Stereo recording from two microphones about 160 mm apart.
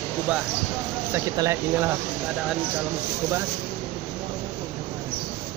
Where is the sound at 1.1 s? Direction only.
15° right (ahead or behind).